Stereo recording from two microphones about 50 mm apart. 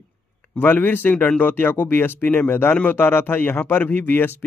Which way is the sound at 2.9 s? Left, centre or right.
Left.